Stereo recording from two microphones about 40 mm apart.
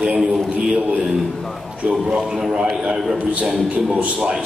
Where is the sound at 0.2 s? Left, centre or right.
Centre.